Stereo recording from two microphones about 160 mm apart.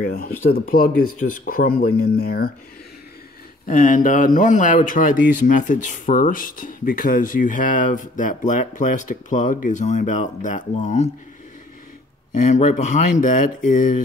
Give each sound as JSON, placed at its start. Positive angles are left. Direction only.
{"t": 0.0, "sound": "speech", "side_deg": 65}
{"t": 3.6, "sound": "speech", "side_deg": 55}
{"t": 12.4, "sound": "speech", "side_deg": 50}